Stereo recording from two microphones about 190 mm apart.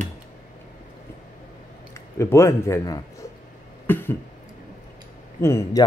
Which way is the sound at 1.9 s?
15° left (ahead or behind).